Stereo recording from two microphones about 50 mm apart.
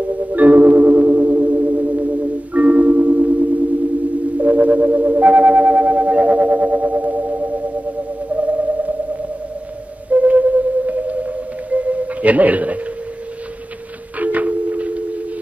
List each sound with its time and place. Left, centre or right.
0.3 s marimba: right
2.5 s music: right
4.4 s telephone: right
8.4 s a sound: right
10.0 s whale vocalization: right
14.1 s telephone dialing: right